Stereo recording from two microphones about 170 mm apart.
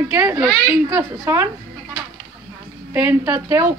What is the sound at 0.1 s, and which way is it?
A woman's voice, 10° right (ahead or behind).